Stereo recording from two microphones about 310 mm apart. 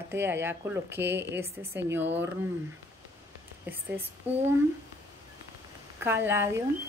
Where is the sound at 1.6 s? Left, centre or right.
Right.